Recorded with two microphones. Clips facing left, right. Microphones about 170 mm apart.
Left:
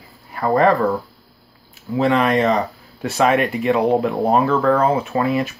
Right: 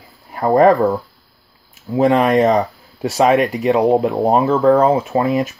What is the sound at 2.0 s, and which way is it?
Speech, 45° right (ahead or behind).